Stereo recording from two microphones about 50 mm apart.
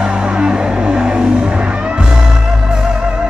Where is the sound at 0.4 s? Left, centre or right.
Centre.